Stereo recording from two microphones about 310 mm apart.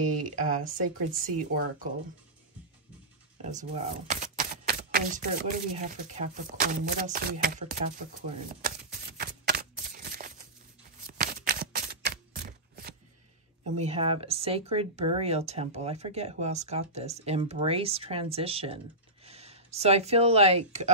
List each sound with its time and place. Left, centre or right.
0.4 s speech: right
3.4 s speech: right
8.1 s shuffling cards: right
11.1 s a sound: right
13.7 s speech: right